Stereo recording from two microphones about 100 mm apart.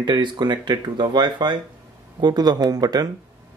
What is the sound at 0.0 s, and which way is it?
Speech, 45° right (ahead or behind).